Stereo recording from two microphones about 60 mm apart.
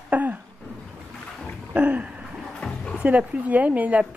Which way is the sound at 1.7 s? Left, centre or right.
Right.